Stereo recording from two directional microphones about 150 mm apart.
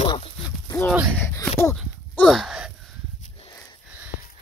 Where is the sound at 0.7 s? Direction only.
15° left (ahead or behind).